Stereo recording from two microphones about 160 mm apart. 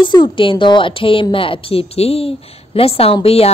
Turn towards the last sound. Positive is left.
turn(degrees=35)  # may be behind; listen again after turning